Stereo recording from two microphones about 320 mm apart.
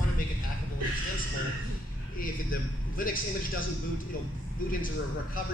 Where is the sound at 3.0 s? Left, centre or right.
Left.